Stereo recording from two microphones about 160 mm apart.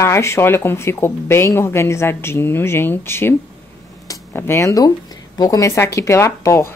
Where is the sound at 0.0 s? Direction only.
15° left (ahead or behind).